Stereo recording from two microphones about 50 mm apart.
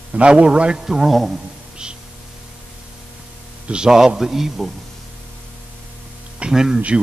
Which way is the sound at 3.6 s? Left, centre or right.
Centre.